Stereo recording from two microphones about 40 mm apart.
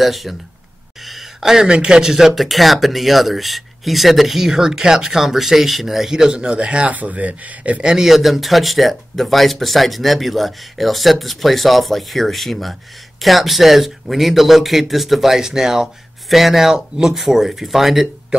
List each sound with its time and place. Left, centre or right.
0.0 s speech: centre
1.0 s a sound: centre
1.4 s speech: centre
6.3 s speech: right
6.9 s speech: right
7.8 s speech: centre